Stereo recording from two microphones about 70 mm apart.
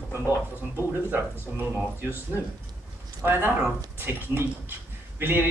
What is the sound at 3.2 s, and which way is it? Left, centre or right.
Speech, right.